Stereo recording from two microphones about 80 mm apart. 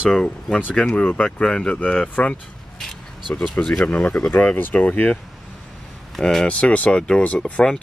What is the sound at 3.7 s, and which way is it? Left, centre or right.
Speech, centre.